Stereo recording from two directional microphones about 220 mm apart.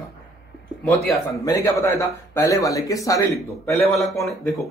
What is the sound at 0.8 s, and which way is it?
A man's voice, 10° left (ahead or behind).